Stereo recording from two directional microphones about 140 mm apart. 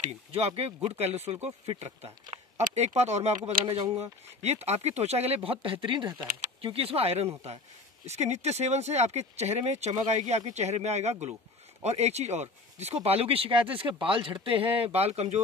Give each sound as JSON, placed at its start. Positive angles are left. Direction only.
{"t": 0.0, "sound": "speech", "side_deg": -45}